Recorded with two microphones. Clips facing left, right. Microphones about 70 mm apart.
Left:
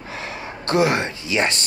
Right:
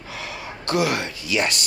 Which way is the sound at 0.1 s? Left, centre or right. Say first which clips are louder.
Left 2 dB; left.